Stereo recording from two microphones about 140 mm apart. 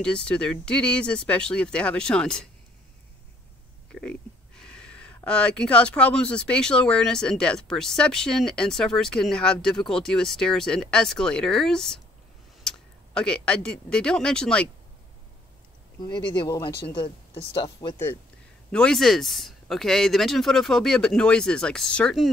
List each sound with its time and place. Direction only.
0.0 s speech: 5° left (ahead or behind)
3.9 s speech: 5° left (ahead or behind)
16.0 s speech: 35° left (ahead or behind)
18.7 s speech: 5° left (ahead or behind)